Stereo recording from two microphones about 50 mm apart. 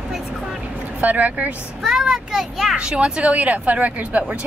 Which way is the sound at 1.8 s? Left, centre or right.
Centre.